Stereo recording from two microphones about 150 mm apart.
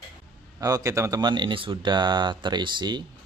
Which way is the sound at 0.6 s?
25° right (ahead or behind).